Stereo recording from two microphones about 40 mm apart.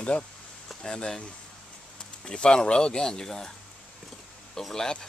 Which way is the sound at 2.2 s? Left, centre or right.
Left.